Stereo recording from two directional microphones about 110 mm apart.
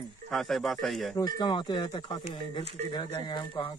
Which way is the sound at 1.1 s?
40° left (ahead or behind).